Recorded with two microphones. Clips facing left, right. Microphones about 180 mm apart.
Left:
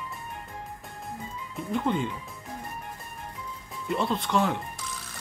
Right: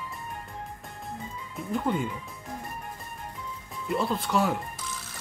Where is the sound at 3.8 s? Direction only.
Centre (ahead or behind).